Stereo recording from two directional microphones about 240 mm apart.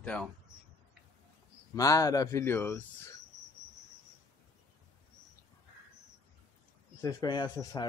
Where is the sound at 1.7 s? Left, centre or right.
Centre.